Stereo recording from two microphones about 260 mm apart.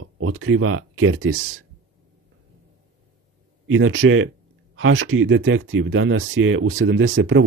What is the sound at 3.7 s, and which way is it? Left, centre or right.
Speech, right.